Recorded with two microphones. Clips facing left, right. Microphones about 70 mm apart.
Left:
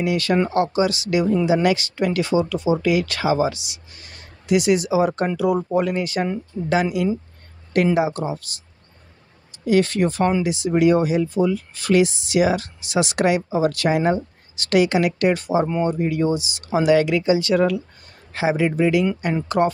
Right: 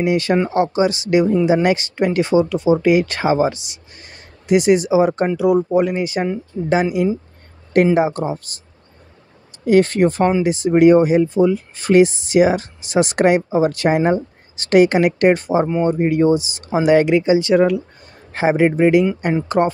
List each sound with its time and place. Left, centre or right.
0.0 s speech: right
9.7 s speech: right
18.3 s speech: right